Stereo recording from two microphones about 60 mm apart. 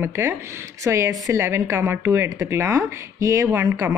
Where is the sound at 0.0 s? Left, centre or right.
Right.